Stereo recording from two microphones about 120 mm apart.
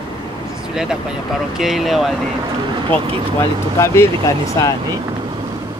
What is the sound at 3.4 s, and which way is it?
Speech, 20° left (ahead or behind).